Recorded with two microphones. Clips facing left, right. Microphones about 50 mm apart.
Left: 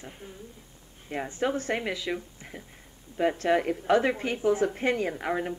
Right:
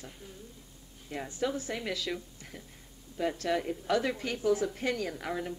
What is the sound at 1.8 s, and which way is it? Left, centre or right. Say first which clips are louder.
Speech: left 4 dB; left.